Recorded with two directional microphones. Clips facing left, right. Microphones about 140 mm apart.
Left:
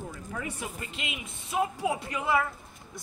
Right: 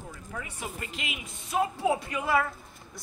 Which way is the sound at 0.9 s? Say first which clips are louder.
Even; 25° left (ahead or behind).